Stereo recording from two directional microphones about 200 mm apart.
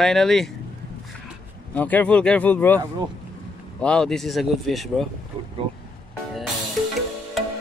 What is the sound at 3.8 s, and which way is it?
Speech, 5° left (ahead or behind).